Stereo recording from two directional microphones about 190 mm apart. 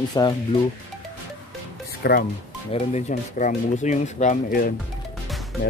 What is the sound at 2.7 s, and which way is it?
Speech, 40° left (ahead or behind).